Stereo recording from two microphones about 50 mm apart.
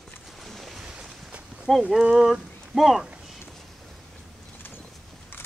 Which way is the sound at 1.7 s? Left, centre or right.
Centre.